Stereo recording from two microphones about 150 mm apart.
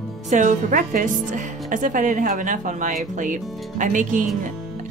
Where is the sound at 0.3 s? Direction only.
55° right (ahead or behind).